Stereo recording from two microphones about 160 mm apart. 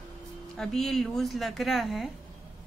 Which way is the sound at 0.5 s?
Centre (ahead or behind).